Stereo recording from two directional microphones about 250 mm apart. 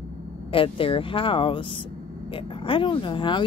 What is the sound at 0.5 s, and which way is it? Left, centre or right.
Speech, left.